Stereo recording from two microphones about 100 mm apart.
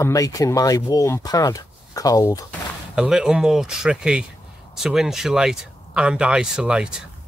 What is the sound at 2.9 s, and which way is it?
Speech, 10° right (ahead or behind).